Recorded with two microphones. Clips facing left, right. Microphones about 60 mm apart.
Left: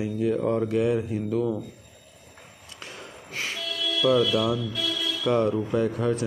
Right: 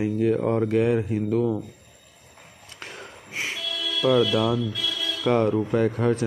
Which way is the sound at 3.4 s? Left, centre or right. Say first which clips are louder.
Right 2 dB; centre.